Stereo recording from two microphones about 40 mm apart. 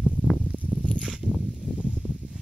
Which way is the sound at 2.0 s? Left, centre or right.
Right.